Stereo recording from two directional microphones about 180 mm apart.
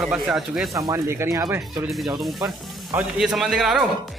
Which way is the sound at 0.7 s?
15° right (ahead or behind).